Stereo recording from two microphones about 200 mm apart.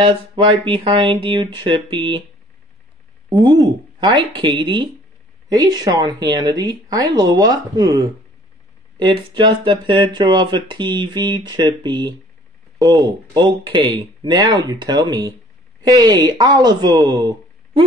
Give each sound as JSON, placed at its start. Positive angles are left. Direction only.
{"t": 0.0, "sound": "speech", "side_deg": -25}
{"t": 3.3, "sound": "speech", "side_deg": -20}